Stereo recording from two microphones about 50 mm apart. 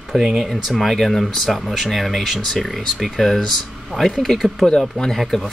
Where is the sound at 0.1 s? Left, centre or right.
Centre.